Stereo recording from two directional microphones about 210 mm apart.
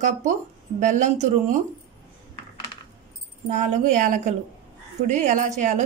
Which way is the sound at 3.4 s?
35° right (ahead or behind).